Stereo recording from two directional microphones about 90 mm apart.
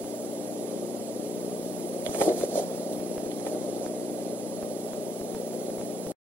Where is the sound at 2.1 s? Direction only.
25° left (ahead or behind).